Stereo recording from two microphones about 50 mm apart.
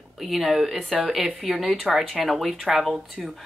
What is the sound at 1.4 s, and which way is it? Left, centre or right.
A woman's voice, centre.